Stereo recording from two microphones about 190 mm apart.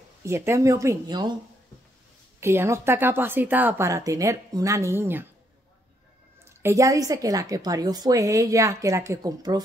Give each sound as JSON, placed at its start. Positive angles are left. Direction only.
{"t": 0.2, "sound": "a woman's voice", "side_deg": -15}
{"t": 2.4, "sound": "a woman's voice", "side_deg": -15}
{"t": 6.6, "sound": "a woman's voice", "side_deg": -15}